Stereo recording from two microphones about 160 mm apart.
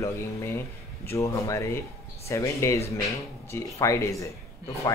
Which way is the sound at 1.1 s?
20° left (ahead or behind).